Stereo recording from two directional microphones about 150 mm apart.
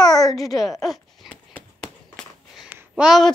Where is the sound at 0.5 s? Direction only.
Centre (ahead or behind).